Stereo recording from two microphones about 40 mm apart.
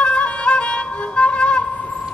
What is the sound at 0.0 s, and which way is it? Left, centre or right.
Music, left.